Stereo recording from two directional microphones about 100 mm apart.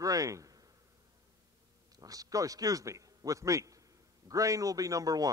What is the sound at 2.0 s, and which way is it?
A man's voice, 35° right (ahead or behind).